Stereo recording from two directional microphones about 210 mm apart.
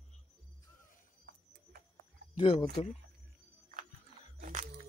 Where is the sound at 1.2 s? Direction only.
45° right (ahead or behind).